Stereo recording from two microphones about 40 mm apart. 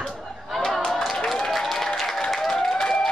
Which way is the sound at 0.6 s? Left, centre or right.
Centre.